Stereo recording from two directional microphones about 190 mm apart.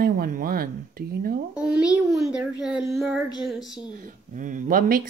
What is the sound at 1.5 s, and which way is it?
A child's voice, 5° right (ahead or behind).